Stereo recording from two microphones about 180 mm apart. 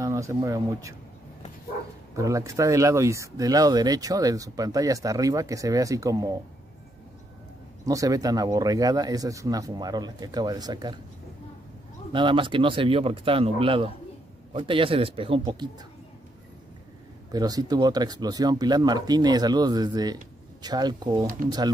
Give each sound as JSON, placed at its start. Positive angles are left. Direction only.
{"t": 0.0, "sound": "speech", "side_deg": -15}
{"t": 2.1, "sound": "speech", "side_deg": -15}
{"t": 7.8, "sound": "speech", "side_deg": -20}
{"t": 12.1, "sound": "speech", "side_deg": -25}
{"t": 17.3, "sound": "speech", "side_deg": -20}